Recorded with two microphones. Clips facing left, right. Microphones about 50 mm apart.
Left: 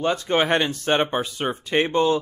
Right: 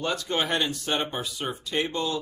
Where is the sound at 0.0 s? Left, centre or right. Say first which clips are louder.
Left 6 dB; left.